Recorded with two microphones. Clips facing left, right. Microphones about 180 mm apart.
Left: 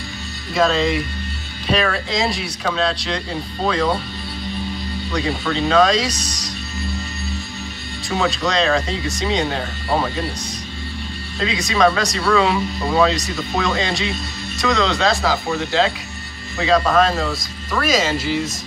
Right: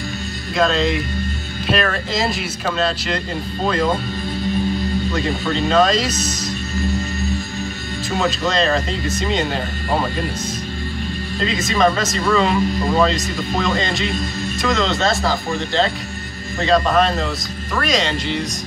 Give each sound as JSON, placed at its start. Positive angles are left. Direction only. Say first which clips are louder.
{"t": 0.6, "sound": "speech", "louder": "even", "side_deg": 0}
{"t": 5.1, "sound": "speech", "louder": "right 1 dB", "side_deg": 0}
{"t": 8.1, "sound": "speech", "louder": "even", "side_deg": 0}
{"t": 11.3, "sound": "speech", "louder": "even", "side_deg": 0}